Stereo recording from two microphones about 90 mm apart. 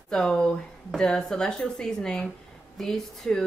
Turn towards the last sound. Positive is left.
turn(degrees=5)  # may be behind; listen again after turning